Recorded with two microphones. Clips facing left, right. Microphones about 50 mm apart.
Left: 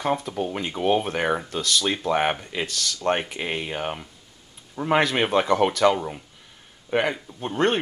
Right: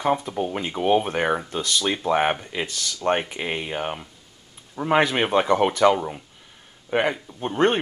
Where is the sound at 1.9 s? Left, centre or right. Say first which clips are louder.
Right 3 dB; centre.